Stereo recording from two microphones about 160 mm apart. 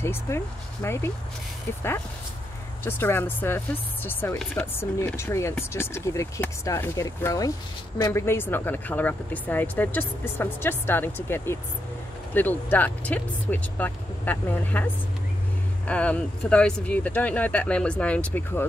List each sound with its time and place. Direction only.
0.0 s speech: 15° left (ahead or behind)
2.8 s speech: 15° left (ahead or behind)
15.9 s speech: 10° left (ahead or behind)